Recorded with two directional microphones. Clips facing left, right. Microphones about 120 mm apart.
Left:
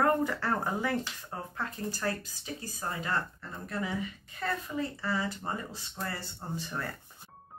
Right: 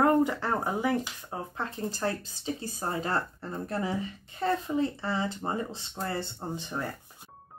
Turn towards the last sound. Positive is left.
turn(degrees=-20)  # may be behind; listen again after turning